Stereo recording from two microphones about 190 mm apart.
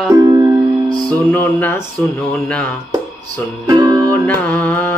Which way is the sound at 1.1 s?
10° left (ahead or behind).